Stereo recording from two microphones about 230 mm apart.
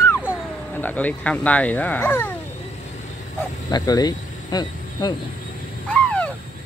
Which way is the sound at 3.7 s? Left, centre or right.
Centre.